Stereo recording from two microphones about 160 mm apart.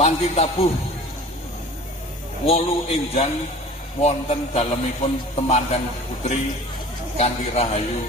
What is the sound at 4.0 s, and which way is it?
Speech, 40° left (ahead or behind).